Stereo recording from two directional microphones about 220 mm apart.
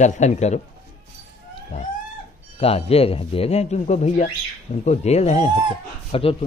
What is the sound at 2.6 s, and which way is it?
A man's voice, 25° left (ahead or behind).